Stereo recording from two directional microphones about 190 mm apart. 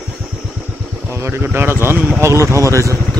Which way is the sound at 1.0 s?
15° right (ahead or behind).